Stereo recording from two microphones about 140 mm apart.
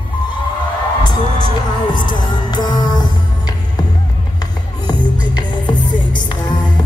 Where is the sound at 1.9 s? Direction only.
35° left (ahead or behind).